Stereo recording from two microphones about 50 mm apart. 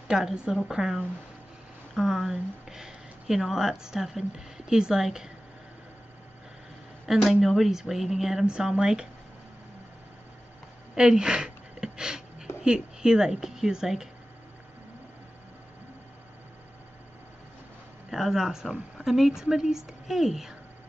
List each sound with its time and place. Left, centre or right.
0.1 s speech: centre
7.1 s speech: centre
8.5 s speech: centre
11.0 s a sound: centre
12.6 s speech: centre
18.1 s speech: centre